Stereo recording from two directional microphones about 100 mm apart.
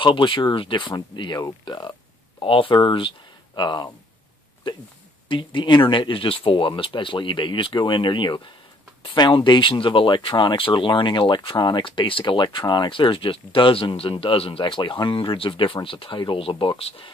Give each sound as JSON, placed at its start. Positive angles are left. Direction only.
{"t": 0.0, "sound": "speech", "side_deg": 55}
{"t": 2.4, "sound": "speech", "side_deg": 60}
{"t": 5.3, "sound": "speech", "side_deg": 55}